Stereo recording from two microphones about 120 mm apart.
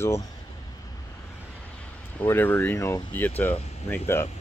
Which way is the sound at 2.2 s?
20° left (ahead or behind).